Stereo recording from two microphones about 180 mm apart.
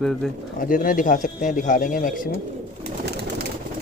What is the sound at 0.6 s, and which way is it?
Speech, 50° left (ahead or behind).